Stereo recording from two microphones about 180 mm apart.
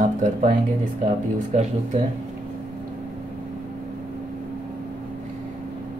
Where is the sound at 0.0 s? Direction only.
45° right (ahead or behind).